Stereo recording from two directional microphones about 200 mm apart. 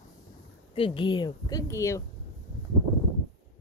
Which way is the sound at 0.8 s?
25° left (ahead or behind).